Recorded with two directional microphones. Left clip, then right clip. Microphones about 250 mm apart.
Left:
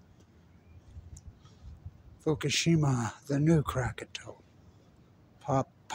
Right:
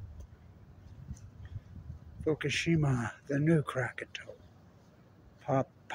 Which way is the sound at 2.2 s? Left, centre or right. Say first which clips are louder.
Left 2 dB; centre.